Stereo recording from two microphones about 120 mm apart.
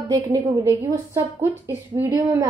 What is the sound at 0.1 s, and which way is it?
A woman's voice, 30° right (ahead or behind).